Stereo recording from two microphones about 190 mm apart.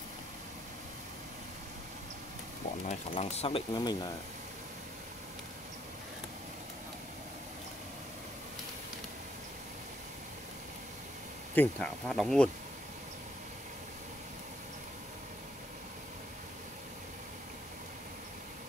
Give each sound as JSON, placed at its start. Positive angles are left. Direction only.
{"t": 2.9, "sound": "speech", "side_deg": 35}
{"t": 11.5, "sound": "speech", "side_deg": 5}